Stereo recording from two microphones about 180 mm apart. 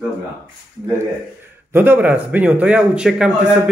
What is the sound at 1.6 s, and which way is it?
Speech, 10° right (ahead or behind).